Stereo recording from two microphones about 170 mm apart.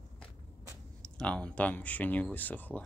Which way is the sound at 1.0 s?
5° left (ahead or behind).